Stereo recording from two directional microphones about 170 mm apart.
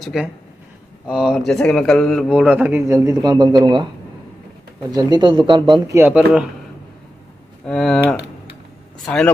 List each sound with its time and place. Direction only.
0.0 s speech: 5° right (ahead or behind); by 3.9 s 25° right (ahead or behind)
4.9 s speech: 25° right (ahead or behind)
5.9 s speech: 10° right (ahead or behind)
7.6 s speech: 5° left (ahead or behind)